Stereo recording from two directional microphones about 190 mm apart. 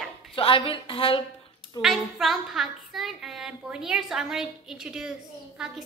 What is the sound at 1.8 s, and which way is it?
A woman's voice, centre (ahead or behind).